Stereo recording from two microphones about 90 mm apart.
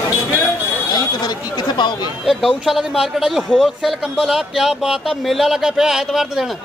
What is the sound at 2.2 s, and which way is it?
Speech, centre (ahead or behind).